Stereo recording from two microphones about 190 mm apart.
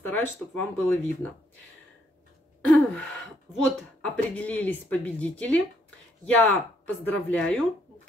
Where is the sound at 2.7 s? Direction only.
5° left (ahead or behind).